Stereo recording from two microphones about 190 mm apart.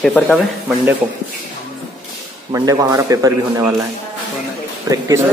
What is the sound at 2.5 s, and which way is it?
A man's voice, 15° right (ahead or behind).